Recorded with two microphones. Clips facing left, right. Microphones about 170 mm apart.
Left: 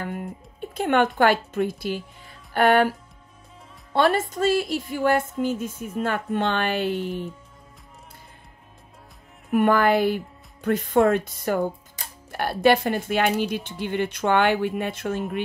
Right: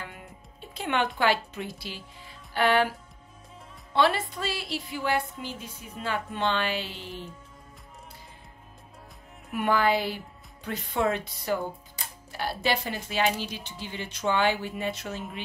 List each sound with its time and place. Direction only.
0.0 s speech: 50° left (ahead or behind)
2.5 s music: 50° left (ahead or behind)
3.9 s music: 45° left (ahead or behind)
9.5 s music: 50° left (ahead or behind)
12.3 s speech: 55° left (ahead or behind)